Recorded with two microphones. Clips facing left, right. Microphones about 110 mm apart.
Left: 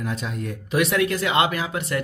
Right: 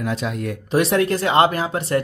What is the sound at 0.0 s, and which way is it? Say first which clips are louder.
Speech: right 5 dB; 90° right.